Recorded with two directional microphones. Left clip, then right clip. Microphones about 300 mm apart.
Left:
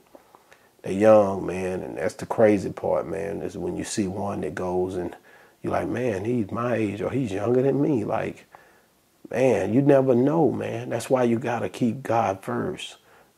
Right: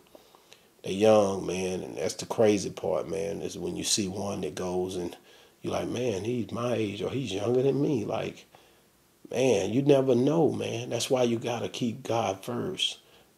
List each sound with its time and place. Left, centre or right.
0.9 s speech: left
9.4 s speech: left